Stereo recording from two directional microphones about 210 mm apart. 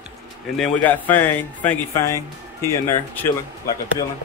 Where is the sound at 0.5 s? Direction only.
5° left (ahead or behind).